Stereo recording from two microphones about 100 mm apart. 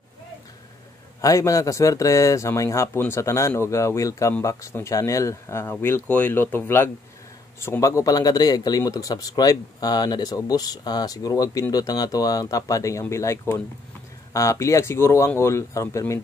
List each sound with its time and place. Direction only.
1.2 s speech: 35° left (ahead or behind)